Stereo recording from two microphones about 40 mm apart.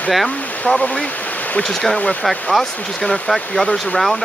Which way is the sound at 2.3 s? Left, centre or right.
Centre.